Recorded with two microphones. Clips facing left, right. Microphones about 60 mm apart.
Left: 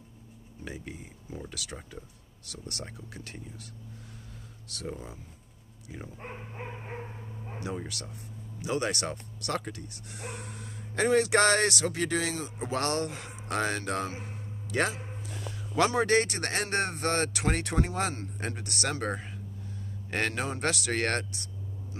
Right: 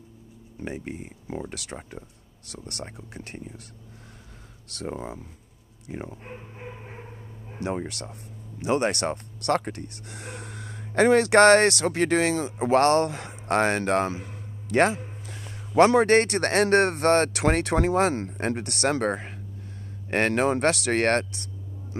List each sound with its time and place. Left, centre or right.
0.7 s speech: right
4.6 s speech: right
7.6 s speech: right
15.5 s a sound: right
16.0 s speech: right